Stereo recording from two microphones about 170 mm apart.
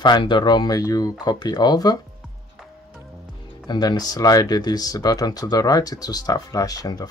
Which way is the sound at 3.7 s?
25° left (ahead or behind).